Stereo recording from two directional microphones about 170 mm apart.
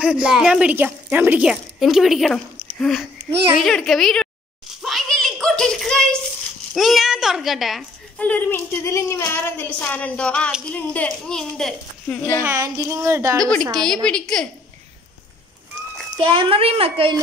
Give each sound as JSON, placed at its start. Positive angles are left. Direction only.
{"t": 0.0, "sound": "a woman's voice", "side_deg": -5}
{"t": 4.8, "sound": "a sound", "side_deg": 0}
{"t": 6.7, "sound": "a woman's voice", "side_deg": 0}
{"t": 12.4, "sound": "speech", "side_deg": -20}
{"t": 13.4, "sound": "a child's voice", "side_deg": 5}
{"t": 16.2, "sound": "speech", "side_deg": -30}